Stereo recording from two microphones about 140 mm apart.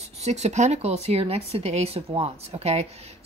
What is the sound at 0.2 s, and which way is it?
Speech, 55° right (ahead or behind).